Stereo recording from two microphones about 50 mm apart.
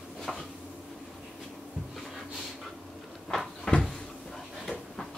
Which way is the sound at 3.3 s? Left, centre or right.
Centre.